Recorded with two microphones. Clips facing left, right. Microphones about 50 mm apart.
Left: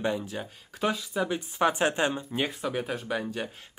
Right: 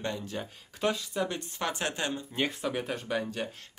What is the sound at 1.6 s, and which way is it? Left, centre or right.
Speech, centre.